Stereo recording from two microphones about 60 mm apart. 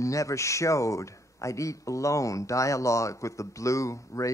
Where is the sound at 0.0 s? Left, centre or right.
Left.